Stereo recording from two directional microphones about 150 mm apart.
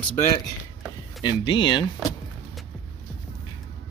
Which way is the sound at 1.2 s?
30° left (ahead or behind).